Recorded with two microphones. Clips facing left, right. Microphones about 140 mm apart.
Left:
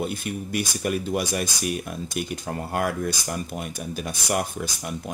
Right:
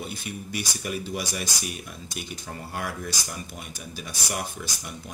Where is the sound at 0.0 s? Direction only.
50° left (ahead or behind).